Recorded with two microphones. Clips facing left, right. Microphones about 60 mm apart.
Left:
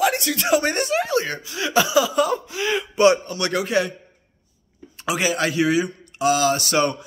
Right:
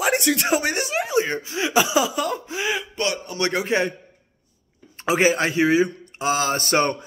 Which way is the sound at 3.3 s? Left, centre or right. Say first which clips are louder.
Even; right.